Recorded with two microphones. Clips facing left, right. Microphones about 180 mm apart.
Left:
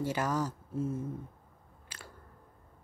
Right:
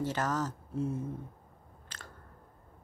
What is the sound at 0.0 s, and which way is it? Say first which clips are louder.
Speech: left 1 dB; 10° left (ahead or behind).